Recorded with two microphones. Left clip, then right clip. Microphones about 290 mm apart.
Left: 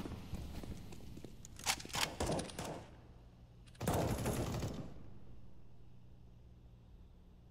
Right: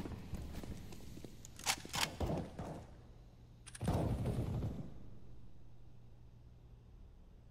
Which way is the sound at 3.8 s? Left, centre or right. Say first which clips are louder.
Left 3 dB; left.